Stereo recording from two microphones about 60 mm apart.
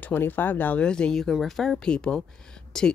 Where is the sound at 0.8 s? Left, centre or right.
Centre.